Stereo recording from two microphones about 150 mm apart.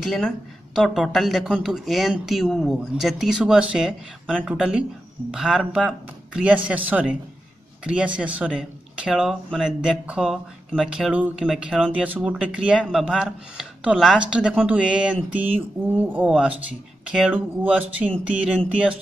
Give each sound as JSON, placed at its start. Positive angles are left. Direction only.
{"t": 0.0, "sound": "speech", "side_deg": 5}